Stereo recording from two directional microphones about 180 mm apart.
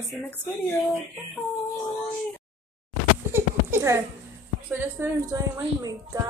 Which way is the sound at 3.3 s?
10° right (ahead or behind).